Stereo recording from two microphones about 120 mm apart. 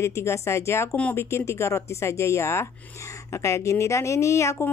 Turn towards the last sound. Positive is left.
turn(degrees=25)  # may be behind; listen again after turning